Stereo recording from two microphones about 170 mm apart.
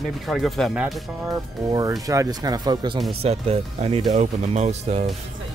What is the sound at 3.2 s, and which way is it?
Speech, 35° right (ahead or behind).